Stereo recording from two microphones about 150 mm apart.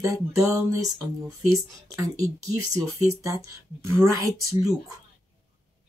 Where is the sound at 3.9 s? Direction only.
20° right (ahead or behind).